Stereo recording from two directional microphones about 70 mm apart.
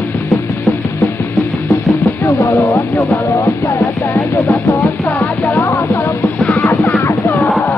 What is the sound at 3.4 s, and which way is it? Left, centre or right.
Music, left.